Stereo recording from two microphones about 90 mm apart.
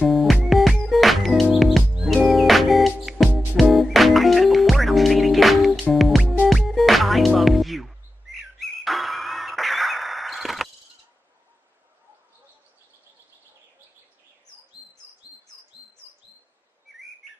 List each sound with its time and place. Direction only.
0.0 s music: centre (ahead or behind)
6.2 s music: 20° left (ahead or behind)
6.7 s music: centre (ahead or behind)
8.5 s a sound: centre (ahead or behind)